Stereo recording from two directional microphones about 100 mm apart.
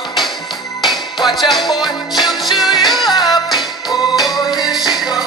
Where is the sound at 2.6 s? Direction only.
45° left (ahead or behind).